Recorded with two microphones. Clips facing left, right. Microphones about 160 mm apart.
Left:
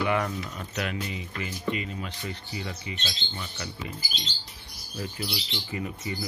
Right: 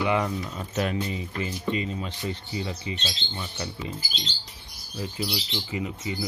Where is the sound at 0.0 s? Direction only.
20° right (ahead or behind).